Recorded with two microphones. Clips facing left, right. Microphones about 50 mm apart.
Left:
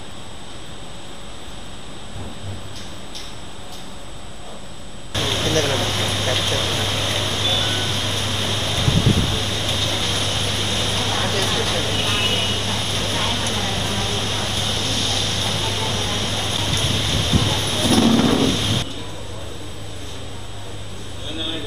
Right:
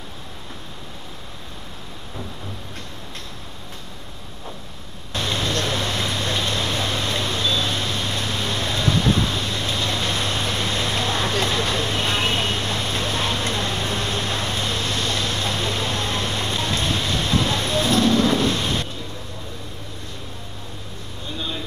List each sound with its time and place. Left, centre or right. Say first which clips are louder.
5.4 s vehicle: left 5 dB; left
5.9 s a sound: left 2 dB; left
7.0 s vehicle: left 1 dB; left
7.4 s a sound: left 1 dB; left
8.0 s vehicle: left 1 dB; left
9.8 s vehicle: even; right
16.5 s boat: right 1 dB; right
17.2 s vehicle: left 1 dB; right
17.8 s music: left 3 dB; left
18.4 s a sound: left 2 dB; right